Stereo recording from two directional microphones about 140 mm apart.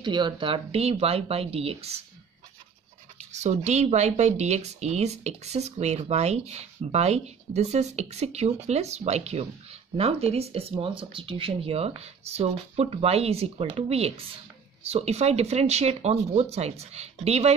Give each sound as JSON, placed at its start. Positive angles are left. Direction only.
{"t": 0.0, "sound": "speech", "side_deg": -35}
{"t": 3.2, "sound": "speech", "side_deg": -55}